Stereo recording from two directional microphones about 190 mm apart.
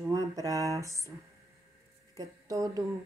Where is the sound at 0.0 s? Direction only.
20° right (ahead or behind).